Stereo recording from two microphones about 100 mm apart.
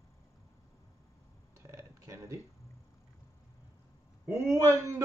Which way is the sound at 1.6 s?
30° right (ahead or behind).